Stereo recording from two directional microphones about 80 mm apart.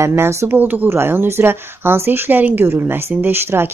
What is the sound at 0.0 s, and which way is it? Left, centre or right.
Speech, right.